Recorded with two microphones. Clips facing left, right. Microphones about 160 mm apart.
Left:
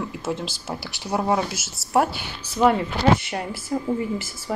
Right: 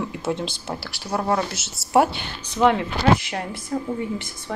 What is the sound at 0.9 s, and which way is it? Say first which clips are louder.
Speech: left 2 dB; 20° left (ahead or behind).